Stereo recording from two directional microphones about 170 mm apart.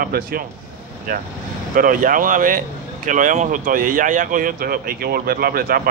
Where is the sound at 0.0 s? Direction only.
60° right (ahead or behind).